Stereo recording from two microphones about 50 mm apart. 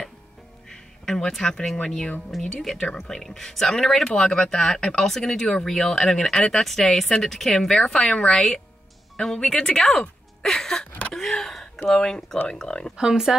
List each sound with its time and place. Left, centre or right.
0.7 s a sound: centre
1.8 s speech: centre
11.1 s gasp: centre
11.9 s speech: centre
12.9 s speech: centre